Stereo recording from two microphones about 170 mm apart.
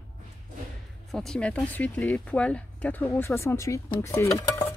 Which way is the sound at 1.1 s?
5° left (ahead or behind).